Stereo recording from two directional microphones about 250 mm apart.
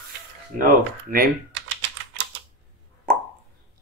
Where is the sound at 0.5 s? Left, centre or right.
Right.